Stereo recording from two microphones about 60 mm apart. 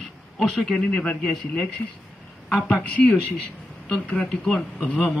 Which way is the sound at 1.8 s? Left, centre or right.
Left.